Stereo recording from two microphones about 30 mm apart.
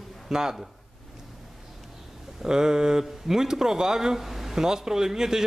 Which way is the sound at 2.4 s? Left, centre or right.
Right.